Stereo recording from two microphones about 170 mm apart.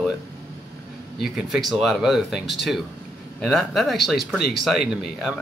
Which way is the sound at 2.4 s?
90° left.